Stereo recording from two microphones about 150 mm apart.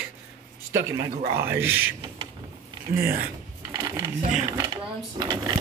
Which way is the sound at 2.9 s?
70° right (ahead or behind).